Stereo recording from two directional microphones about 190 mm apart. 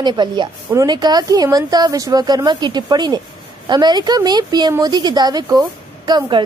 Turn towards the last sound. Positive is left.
turn(degrees=-20)  # may be behind; listen again after turning